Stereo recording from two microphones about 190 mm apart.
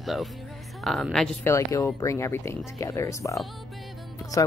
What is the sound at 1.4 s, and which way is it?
A woman's voice, 15° left (ahead or behind).